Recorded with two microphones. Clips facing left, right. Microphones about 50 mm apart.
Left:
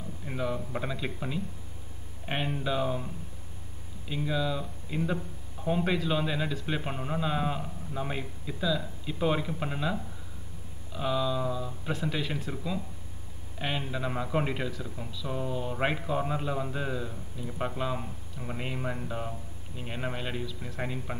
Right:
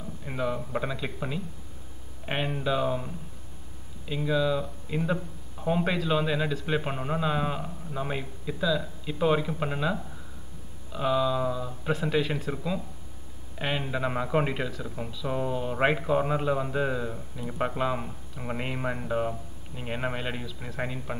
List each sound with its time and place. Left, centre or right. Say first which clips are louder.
0.2 s a man's voice: right 2 dB; centre
4.1 s a man's voice: right 4 dB; centre
20.7 s a man's voice: right 3 dB; centre